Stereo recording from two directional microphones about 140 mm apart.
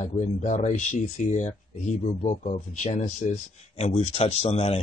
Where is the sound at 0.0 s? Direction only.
60° left (ahead or behind).